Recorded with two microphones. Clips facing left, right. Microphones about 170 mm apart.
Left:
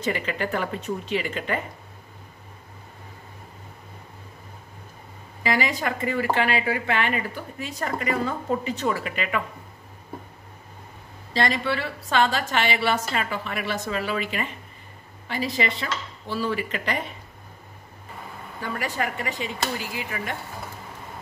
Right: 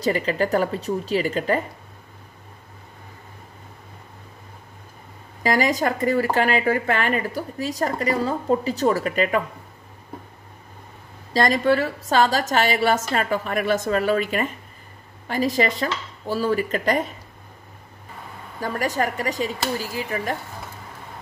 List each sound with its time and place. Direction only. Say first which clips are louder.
0.0 s speech: right 5 dB; 35° right (ahead or behind)
5.4 s speech: right 5 dB; 40° right (ahead or behind)
11.3 s speech: right 6 dB; 45° right (ahead or behind)
13.1 s dishes: right 5 dB; 45° right (ahead or behind)
18.6 s speech: right 5 dB; 40° right (ahead or behind)